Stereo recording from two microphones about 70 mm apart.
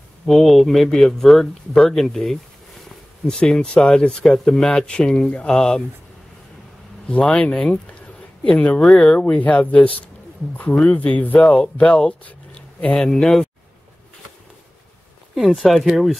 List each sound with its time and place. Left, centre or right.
0.3 s speech: centre
7.1 s speech: centre
8.8 s speech: centre
9.2 s speech: centre
12.9 s speech: centre
15.3 s speech: centre